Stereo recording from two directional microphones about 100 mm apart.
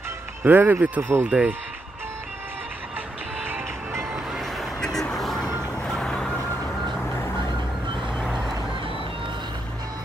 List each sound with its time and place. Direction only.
0.4 s speech: 20° right (ahead or behind)
4.6 s vehicle: 5° left (ahead or behind)